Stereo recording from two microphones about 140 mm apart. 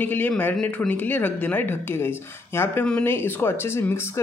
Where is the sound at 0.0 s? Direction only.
15° left (ahead or behind).